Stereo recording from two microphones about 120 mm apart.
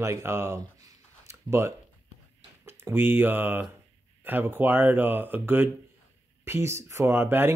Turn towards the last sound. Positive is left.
turn(degrees=-20)  # may be behind; listen again after turning